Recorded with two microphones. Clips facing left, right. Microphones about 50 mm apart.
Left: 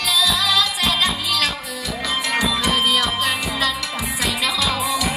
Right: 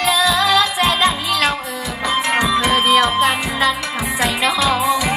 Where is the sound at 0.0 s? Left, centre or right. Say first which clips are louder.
Right 5 dB; right.